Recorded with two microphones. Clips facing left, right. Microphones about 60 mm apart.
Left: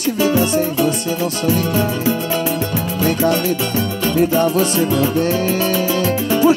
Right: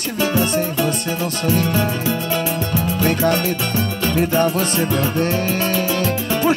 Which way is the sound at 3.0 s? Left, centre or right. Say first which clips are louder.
Left 2 dB; right.